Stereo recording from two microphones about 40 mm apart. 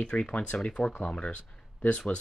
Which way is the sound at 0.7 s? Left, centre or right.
Left.